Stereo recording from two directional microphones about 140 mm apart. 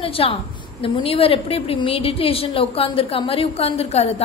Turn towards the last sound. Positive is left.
turn(degrees=50)  # may be behind; listen again after turning